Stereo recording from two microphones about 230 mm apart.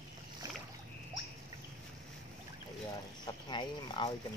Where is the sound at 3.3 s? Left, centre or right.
Centre.